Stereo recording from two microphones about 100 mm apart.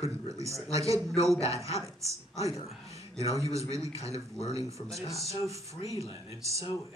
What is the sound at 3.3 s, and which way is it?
Speech, 30° right (ahead or behind).